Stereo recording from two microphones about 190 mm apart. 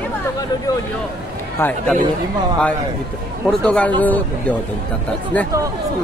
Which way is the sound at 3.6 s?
5° left (ahead or behind).